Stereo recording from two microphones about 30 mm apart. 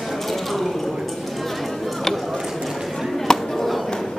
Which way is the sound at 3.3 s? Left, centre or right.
Left.